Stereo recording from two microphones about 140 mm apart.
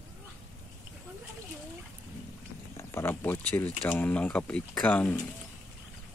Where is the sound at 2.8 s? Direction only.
20° left (ahead or behind).